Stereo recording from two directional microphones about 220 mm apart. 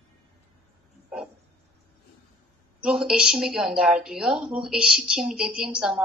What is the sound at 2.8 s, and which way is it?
A woman's voice, 5° right (ahead or behind).